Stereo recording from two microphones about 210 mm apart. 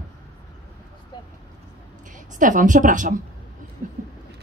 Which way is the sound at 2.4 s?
40° right (ahead or behind).